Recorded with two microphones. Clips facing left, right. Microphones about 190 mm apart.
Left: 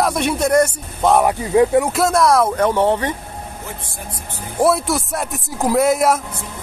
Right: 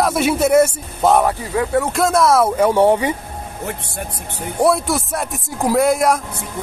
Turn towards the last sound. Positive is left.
turn(degrees=0)  # may be behind; listen again after turning